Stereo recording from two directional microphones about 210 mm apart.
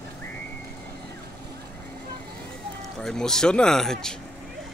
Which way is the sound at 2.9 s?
Centre (ahead or behind).